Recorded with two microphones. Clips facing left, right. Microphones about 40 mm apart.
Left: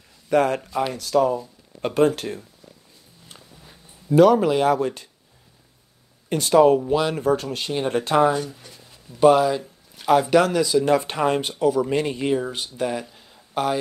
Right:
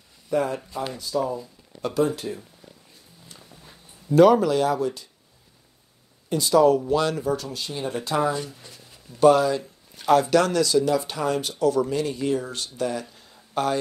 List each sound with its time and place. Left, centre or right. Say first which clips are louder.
0.3 s speech: left 5 dB; left
1.4 s a sound: left 3 dB; left
2.0 s speech: left 4 dB; left
4.4 s speech: left 2 dB; left
4.6 s speech: left 4 dB; left
6.2 s speech: left 2 dB; left
6.8 s speech: left 1 dB; centre
7.2 s speech: left 5 dB; left
8.5 s a sound: left 1 dB; centre
9.2 s a man's voice: left 1 dB; centre
10.9 s speech: left 4 dB; left; by 13.7 s centre